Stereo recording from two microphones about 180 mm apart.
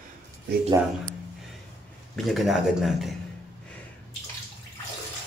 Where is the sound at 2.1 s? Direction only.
Centre (ahead or behind).